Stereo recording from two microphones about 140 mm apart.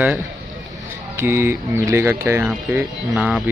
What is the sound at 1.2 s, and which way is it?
Speech, 20° right (ahead or behind).